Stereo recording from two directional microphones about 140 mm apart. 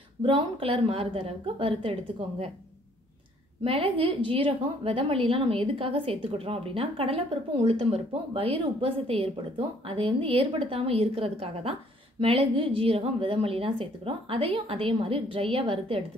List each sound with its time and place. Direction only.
0.2 s a woman's voice: 40° right (ahead or behind)
3.6 s a woman's voice: 40° right (ahead or behind)